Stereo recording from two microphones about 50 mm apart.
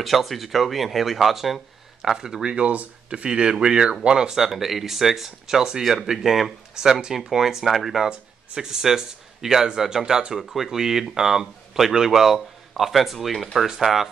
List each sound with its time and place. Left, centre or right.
0.0 s speech: centre